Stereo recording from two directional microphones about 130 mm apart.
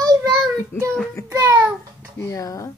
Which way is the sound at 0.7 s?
20° left (ahead or behind).